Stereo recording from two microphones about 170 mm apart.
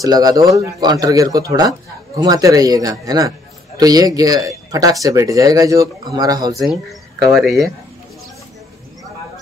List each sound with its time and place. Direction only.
0.0 s a man's voice: 20° right (ahead or behind)
6.6 s speech: centre (ahead or behind)